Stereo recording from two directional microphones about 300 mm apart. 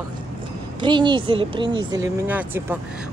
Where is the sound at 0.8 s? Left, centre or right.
Centre.